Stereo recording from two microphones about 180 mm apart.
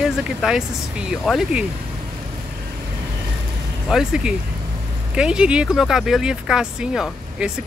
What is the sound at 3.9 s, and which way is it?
Speech, 5° right (ahead or behind).